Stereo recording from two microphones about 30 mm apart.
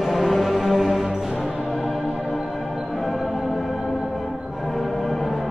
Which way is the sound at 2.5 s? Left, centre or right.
Centre.